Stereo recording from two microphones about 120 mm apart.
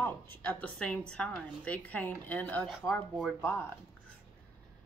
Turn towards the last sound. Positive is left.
turn(degrees=20)  # may be behind; listen again after turning